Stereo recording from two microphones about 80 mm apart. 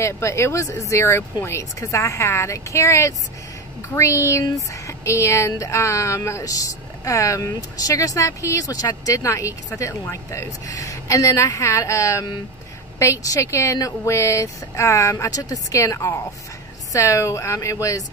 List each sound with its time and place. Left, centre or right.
0.0 s speech: left